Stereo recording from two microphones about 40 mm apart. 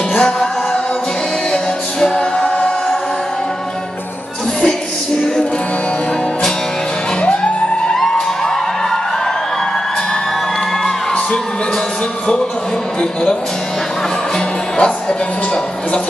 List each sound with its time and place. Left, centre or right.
0.1 s music: centre
1.5 s music: centre
7.2 s music: left
7.9 s music: centre
14.8 s music: left